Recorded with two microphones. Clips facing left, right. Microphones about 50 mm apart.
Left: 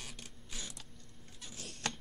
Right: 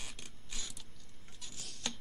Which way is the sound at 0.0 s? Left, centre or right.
Centre.